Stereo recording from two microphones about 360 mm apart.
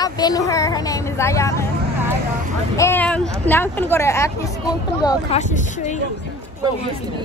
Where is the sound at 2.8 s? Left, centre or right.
Centre.